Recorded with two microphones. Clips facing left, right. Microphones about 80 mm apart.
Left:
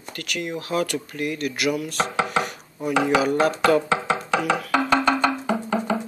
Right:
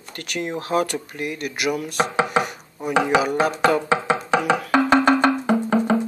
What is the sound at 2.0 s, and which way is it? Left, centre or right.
Chopping, centre.